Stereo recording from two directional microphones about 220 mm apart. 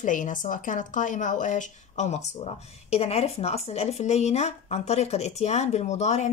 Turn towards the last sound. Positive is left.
turn(degrees=30)  # may be behind; listen again after turning